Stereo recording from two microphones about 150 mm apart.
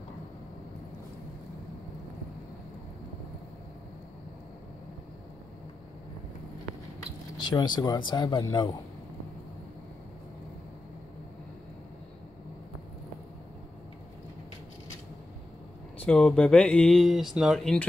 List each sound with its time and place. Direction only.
7.3 s speech: 30° left (ahead or behind)
16.0 s speech: 5° left (ahead or behind)